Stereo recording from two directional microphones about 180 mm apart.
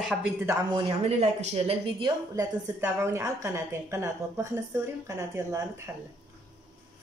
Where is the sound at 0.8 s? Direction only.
35° right (ahead or behind).